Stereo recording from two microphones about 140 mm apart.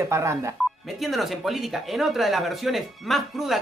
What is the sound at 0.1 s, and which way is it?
Speech, 20° right (ahead or behind).